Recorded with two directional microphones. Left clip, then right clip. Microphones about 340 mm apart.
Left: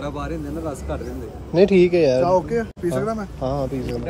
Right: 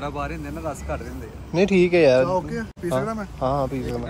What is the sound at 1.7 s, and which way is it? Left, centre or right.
Speech, centre.